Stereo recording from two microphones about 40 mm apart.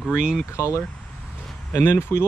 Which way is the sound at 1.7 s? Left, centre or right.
Left.